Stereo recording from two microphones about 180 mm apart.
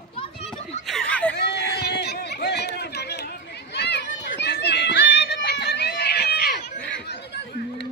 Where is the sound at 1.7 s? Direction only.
65° left (ahead or behind).